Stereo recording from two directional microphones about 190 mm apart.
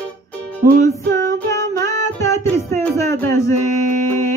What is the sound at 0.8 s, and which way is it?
Music, 15° left (ahead or behind).